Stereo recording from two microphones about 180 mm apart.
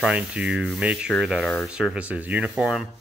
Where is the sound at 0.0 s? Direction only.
5° right (ahead or behind).